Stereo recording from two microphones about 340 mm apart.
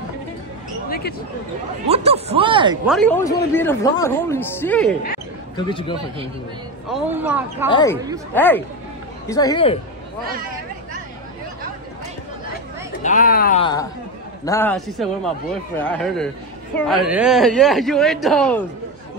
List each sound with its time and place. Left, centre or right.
0.8 s speech: left
1.9 s speech: centre
2.9 s speech: centre
6.9 s speech: centre
7.7 s speech: centre
13.0 s speech: left; by 18.7 s centre